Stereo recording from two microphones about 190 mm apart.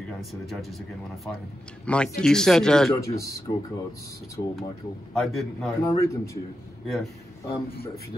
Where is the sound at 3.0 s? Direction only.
15° left (ahead or behind).